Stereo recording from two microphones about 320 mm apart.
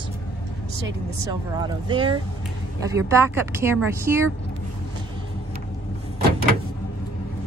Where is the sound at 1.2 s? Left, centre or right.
Centre.